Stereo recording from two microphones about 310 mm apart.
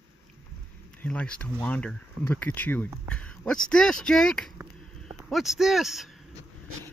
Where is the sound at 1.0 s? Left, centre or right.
Centre.